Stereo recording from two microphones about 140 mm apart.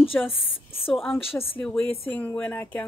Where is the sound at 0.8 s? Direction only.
Centre (ahead or behind).